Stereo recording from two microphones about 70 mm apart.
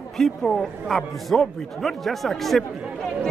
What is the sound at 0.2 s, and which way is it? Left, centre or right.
A man's voice, centre.